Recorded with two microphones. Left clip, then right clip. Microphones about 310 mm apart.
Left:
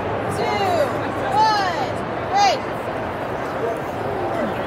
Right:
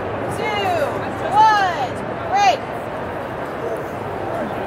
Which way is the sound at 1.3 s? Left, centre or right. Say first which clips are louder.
Right 4 dB; right.